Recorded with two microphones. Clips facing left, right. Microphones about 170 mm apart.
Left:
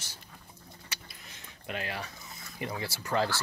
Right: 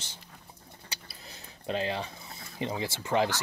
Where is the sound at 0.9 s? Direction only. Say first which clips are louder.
Right 4 dB; 35° right (ahead or behind); by 3.4 s 20° right (ahead or behind).